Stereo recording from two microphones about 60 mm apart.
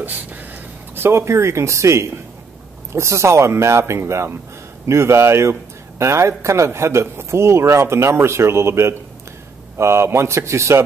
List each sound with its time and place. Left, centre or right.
0.9 s a man's voice: right